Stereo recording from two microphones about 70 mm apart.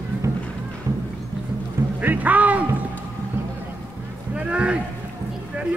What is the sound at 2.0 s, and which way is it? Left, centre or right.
Speech, right.